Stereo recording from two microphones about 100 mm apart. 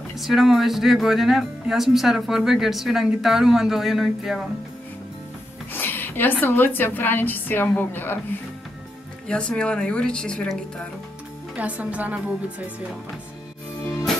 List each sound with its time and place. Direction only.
0.1 s speech: centre (ahead or behind)
5.7 s a sound: 20° left (ahead or behind)
6.4 s a woman's voice: 20° left (ahead or behind)
9.3 s a woman's voice: 10° left (ahead or behind)
11.5 s speech: 15° right (ahead or behind)